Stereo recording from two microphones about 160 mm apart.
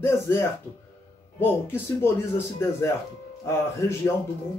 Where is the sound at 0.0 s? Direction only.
15° left (ahead or behind).